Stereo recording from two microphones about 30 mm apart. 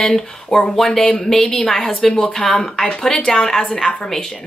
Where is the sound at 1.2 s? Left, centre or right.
Centre.